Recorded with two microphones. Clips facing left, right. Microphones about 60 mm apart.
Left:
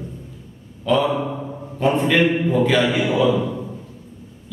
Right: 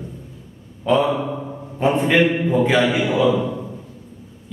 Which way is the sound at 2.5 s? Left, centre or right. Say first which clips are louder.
Right 1 dB; centre.